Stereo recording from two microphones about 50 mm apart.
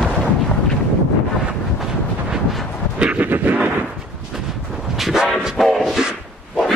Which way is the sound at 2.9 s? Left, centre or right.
Right.